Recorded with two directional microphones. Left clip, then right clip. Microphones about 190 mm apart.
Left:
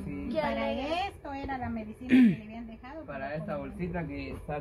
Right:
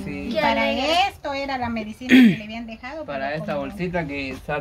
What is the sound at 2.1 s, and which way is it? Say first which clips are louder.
A woman's voice: right 9 dB; 10° right (ahead or behind).